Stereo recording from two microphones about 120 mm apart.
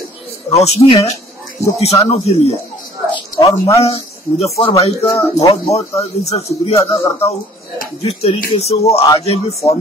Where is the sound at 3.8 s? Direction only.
55° left (ahead or behind).